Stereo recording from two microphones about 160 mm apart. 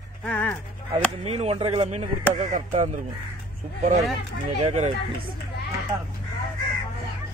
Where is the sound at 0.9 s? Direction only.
40° right (ahead or behind).